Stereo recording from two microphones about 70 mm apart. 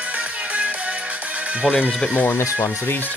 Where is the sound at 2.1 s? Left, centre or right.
Left.